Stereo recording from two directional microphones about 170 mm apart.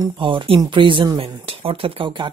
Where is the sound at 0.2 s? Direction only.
30° right (ahead or behind).